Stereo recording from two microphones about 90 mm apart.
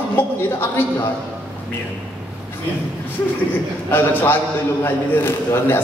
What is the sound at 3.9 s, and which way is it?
A man's voice, 25° left (ahead or behind).